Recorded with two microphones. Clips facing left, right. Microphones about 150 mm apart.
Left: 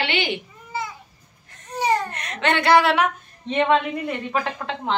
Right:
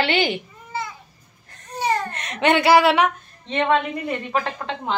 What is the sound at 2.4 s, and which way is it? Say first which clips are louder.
A woman's voice: right 2 dB; 10° right (ahead or behind).